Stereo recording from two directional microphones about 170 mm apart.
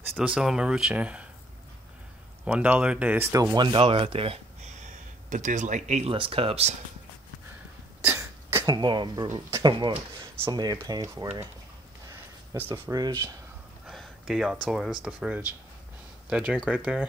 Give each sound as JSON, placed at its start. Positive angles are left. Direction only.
{"t": 0.2, "sound": "speech", "side_deg": -5}
{"t": 2.4, "sound": "speech", "side_deg": -10}
{"t": 8.0, "sound": "cough", "side_deg": -10}
{"t": 8.6, "sound": "speech", "side_deg": -25}
{"t": 13.8, "sound": "speech", "side_deg": 0}